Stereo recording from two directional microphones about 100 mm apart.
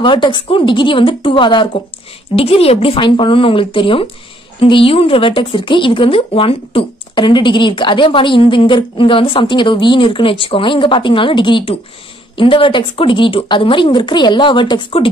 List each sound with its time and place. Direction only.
0.0 s a woman's voice: 55° left (ahead or behind)
2.3 s a woman's voice: 75° left (ahead or behind); by 15.0 s 60° left (ahead or behind)